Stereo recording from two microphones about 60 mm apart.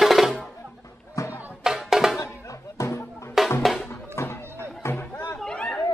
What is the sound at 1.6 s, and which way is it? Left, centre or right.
Music, centre.